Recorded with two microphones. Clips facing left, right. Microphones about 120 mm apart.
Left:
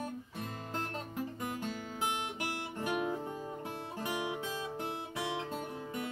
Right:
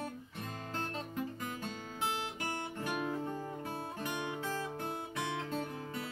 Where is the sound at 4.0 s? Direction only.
20° left (ahead or behind).